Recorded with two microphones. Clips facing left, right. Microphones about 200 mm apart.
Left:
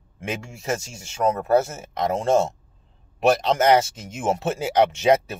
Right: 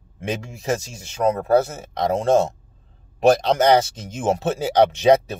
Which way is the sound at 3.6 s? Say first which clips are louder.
Right 1 dB; 35° right (ahead or behind).